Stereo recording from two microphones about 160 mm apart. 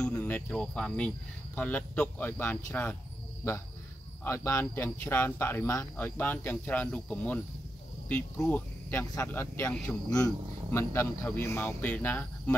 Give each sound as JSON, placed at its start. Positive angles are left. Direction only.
{"t": 0.0, "sound": "speech", "side_deg": 10}
{"t": 4.2, "sound": "speech", "side_deg": 15}